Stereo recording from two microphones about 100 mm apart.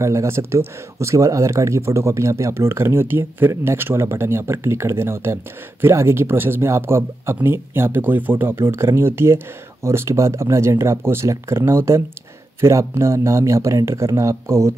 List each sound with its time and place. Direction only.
0.0 s speech: 30° right (ahead or behind)